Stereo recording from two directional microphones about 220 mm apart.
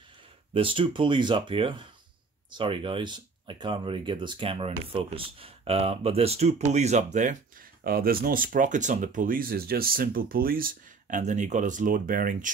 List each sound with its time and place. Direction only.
0.5 s speech: 25° right (ahead or behind)